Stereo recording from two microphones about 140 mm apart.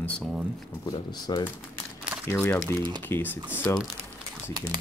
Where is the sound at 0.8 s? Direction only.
30° left (ahead or behind).